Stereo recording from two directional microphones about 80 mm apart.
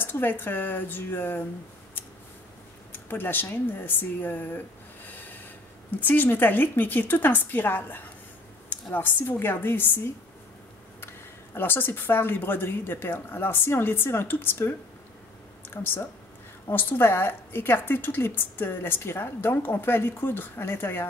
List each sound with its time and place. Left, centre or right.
0.0 s a woman's voice: left
2.9 s a woman's voice: left
11.5 s a woman's voice: left